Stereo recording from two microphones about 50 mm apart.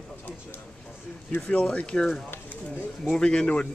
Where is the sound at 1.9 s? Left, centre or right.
Centre.